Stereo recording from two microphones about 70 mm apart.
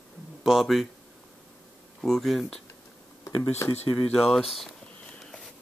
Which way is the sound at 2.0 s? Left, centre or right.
Centre.